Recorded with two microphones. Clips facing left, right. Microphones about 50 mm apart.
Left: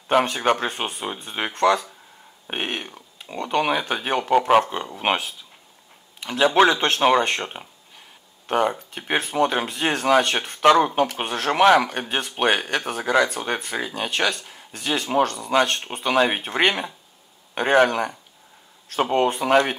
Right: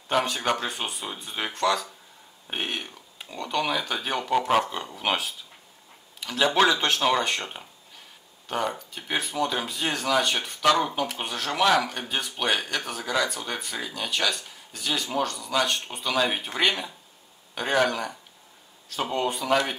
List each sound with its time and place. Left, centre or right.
0.1 s speech: left
6.1 s a sound: left
6.4 s speech: left
6.7 s speech: left
8.5 s speech: left